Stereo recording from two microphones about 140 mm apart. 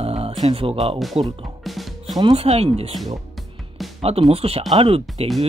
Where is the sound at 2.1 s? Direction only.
40° right (ahead or behind).